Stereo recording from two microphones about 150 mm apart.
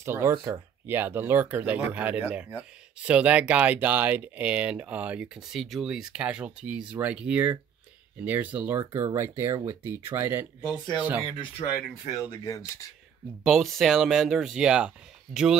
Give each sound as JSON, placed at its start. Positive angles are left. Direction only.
{"t": 0.0, "sound": "speech", "side_deg": -15}
{"t": 12.2, "sound": "speech", "side_deg": 20}
{"t": 13.4, "sound": "speech", "side_deg": 0}